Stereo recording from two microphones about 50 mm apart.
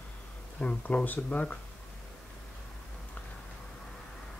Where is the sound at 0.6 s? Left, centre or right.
Left.